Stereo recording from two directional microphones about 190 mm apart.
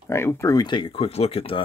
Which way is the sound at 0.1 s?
15° left (ahead or behind).